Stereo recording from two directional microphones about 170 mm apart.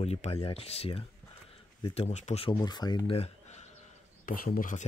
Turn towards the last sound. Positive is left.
turn(degrees=55)  # may be behind; listen again after turning